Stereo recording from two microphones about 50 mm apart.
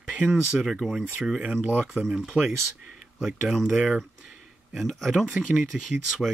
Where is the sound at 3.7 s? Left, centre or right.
Centre.